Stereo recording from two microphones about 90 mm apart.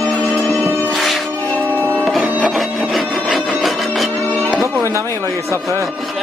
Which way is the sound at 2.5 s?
Centre (ahead or behind).